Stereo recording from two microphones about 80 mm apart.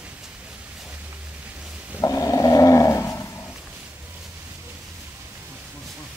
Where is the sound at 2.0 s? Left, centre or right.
Left.